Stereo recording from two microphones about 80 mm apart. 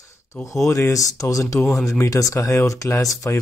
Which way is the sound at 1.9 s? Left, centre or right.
Left.